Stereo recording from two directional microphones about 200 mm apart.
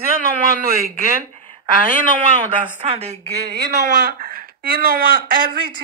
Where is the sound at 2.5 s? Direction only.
30° right (ahead or behind).